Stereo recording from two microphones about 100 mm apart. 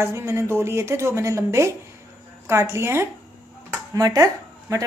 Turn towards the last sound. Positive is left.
turn(degrees=-30)  # may be behind; listen again after turning